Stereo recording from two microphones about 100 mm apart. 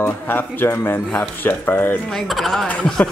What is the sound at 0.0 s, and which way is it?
Speech, 20° left (ahead or behind).